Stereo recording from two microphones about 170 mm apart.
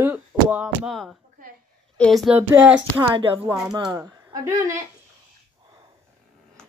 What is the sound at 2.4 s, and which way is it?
Speech, 10° right (ahead or behind).